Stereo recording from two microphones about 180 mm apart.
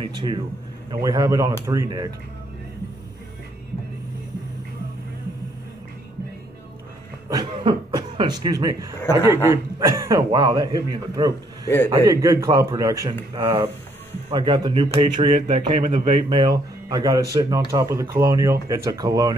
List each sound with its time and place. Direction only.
0.0 s a man's voice: 25° right (ahead or behind)
7.2 s speech: 25° right (ahead or behind)
8.9 s speech: 20° left (ahead or behind)
9.5 s speech: 15° right (ahead or behind)